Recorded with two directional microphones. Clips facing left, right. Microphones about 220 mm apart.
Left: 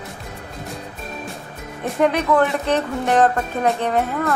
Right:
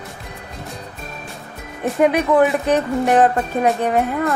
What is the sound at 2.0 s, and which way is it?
A woman's voice, 10° right (ahead or behind).